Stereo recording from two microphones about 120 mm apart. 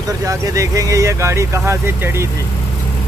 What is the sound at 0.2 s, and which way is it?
Speech, 25° right (ahead or behind).